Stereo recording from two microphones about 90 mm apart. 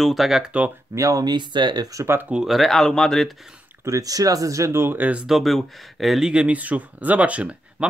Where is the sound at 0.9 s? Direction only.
40° right (ahead or behind).